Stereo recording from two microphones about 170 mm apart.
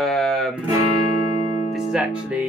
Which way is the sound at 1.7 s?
5° right (ahead or behind).